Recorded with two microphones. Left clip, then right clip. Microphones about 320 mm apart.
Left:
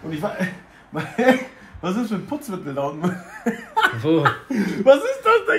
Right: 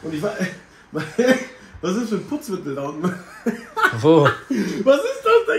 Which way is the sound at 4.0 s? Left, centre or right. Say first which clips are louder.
Right 6 dB; centre.